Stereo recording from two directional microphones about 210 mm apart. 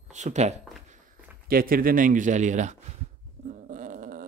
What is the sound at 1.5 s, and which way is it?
A man's voice, 45° right (ahead or behind).